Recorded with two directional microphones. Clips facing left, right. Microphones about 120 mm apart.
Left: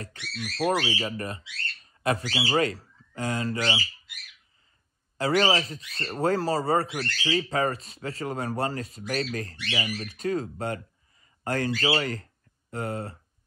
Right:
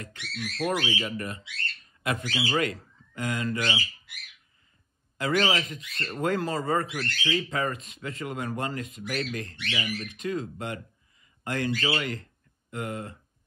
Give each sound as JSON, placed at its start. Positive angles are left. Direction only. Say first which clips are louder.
{"t": 0.6, "sound": "speech", "louder": "left 3 dB", "side_deg": 30}
{"t": 5.1, "sound": "speech", "louder": "left 2 dB", "side_deg": 35}
{"t": 10.1, "sound": "speech", "louder": "left 5 dB", "side_deg": 40}